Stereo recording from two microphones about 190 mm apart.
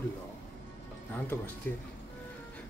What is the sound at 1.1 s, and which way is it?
Speech, 10° left (ahead or behind).